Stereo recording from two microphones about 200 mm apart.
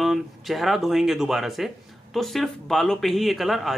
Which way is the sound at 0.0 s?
Centre (ahead or behind).